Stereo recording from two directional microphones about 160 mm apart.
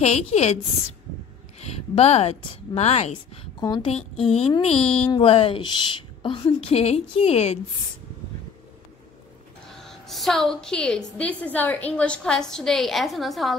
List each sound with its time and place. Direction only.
0.0 s a woman's voice: 45° left (ahead or behind)
1.6 s speech: 40° left (ahead or behind)
9.8 s a woman's voice: centre (ahead or behind)